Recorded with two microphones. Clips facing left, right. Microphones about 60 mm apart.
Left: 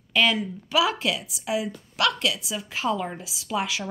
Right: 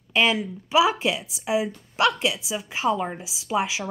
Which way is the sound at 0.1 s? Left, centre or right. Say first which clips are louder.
Right 1 dB; centre.